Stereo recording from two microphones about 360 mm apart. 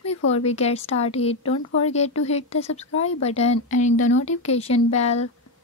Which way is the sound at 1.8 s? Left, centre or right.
Centre.